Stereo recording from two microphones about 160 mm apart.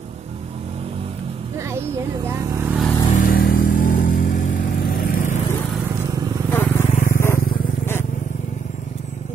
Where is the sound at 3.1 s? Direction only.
65° left (ahead or behind).